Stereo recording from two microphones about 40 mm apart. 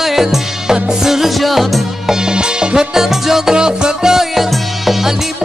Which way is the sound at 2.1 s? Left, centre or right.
Centre.